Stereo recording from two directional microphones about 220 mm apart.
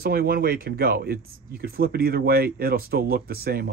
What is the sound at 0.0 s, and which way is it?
Speech, 40° right (ahead or behind).